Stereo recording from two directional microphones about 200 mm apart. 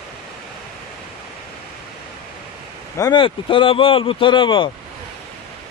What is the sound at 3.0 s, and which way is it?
Speech, 20° left (ahead or behind).